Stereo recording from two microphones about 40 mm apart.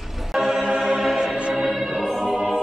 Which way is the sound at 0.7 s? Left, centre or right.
Centre.